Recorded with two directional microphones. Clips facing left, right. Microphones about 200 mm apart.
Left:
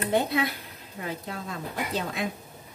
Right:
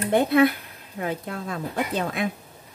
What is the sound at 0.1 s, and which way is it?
Speech, 55° right (ahead or behind).